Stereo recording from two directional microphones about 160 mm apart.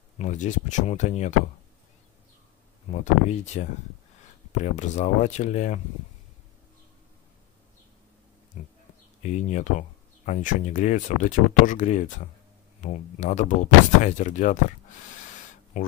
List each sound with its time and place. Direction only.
0.2 s speech: 50° left (ahead or behind)
2.9 s speech: 45° left (ahead or behind)
9.2 s speech: 50° left (ahead or behind)